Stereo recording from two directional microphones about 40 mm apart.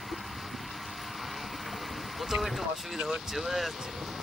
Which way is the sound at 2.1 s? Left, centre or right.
Centre.